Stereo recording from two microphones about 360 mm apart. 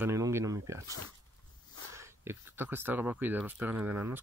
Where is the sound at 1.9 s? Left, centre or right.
Centre.